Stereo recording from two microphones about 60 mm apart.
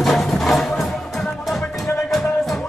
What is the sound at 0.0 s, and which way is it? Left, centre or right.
Music, centre.